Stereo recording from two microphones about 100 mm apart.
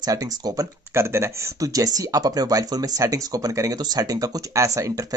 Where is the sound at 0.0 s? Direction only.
40° right (ahead or behind).